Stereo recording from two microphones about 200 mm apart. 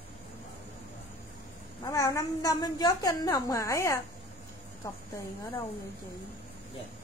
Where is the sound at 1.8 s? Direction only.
15° left (ahead or behind).